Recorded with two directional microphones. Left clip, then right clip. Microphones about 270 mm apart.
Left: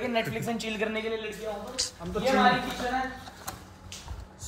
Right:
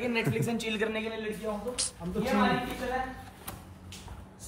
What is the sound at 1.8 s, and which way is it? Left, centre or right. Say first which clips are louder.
Speech: left 3 dB; centre.